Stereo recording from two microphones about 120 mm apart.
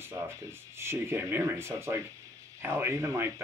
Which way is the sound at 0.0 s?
20° right (ahead or behind).